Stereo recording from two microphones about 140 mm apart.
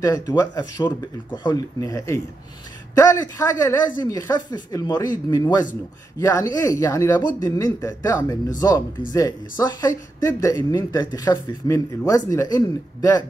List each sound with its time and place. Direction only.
0.0 s speech: 25° left (ahead or behind)